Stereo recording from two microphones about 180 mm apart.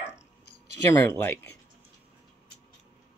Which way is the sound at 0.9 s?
15° left (ahead or behind).